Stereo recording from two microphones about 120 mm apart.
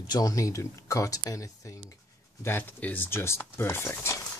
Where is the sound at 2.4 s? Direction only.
15° left (ahead or behind).